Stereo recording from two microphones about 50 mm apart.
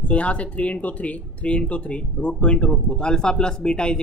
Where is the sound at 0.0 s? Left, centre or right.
Left.